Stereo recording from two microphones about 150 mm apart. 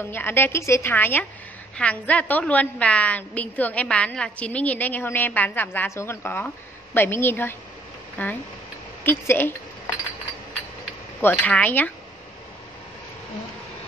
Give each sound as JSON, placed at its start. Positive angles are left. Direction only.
{"t": 0.0, "sound": "a woman's voice", "side_deg": 15}
{"t": 11.1, "sound": "a woman's voice", "side_deg": 10}